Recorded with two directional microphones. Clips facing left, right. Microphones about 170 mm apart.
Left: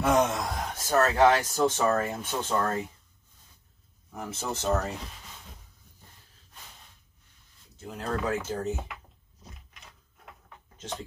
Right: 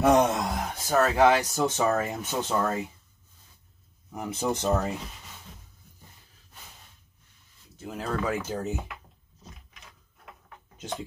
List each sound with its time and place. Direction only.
0.3 s a sound: 15° right (ahead or behind)
1.1 s speech: 5° right (ahead or behind)
4.1 s speech: 15° right (ahead or behind)
8.0 s speech: 5° right (ahead or behind)
10.8 s speech: 5° right (ahead or behind)